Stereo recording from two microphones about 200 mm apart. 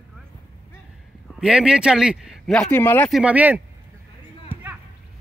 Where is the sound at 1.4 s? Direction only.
5° right (ahead or behind).